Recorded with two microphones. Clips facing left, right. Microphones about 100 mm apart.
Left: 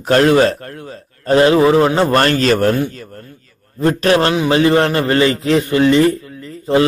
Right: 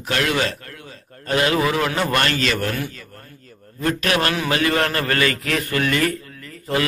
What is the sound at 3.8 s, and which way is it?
A man's voice, 30° left (ahead or behind).